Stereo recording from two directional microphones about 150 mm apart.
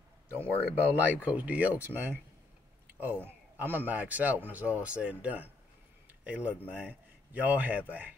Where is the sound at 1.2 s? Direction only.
10° right (ahead or behind).